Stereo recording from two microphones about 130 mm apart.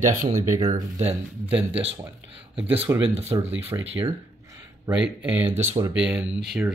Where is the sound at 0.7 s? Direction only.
55° right (ahead or behind).